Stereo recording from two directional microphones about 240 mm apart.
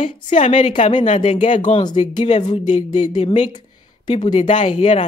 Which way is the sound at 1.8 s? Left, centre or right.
Centre.